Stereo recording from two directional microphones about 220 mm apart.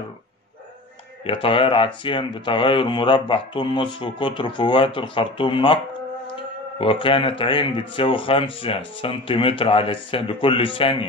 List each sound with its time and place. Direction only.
1.2 s speech: 25° left (ahead or behind)
6.8 s speech: 25° left (ahead or behind)